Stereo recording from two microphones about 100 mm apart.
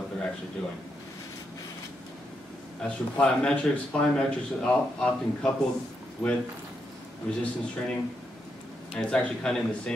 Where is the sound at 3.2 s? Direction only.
10° left (ahead or behind).